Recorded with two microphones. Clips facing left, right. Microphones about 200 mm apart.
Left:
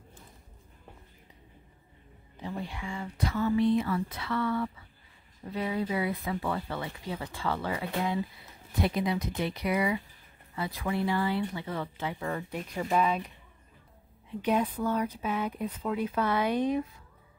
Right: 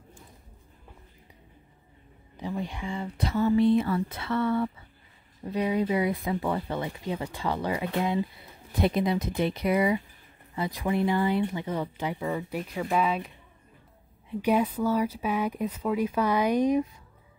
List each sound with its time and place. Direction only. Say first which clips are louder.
2.4 s speech: right 4 dB; 20° right (ahead or behind)
10.5 s speech: right 4 dB; 20° right (ahead or behind); by 13.3 s centre (ahead or behind)
14.4 s speech: right 3 dB; 10° right (ahead or behind)